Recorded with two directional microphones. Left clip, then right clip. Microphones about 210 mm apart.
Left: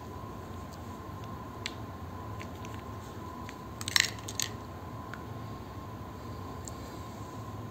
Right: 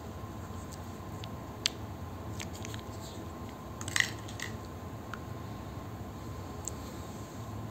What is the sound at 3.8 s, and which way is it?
Crushing, 30° left (ahead or behind).